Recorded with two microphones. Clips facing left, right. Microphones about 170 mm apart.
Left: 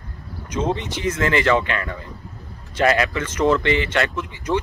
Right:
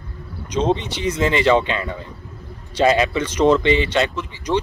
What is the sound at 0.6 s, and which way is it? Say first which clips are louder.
Speech: right 3 dB; 20° right (ahead or behind).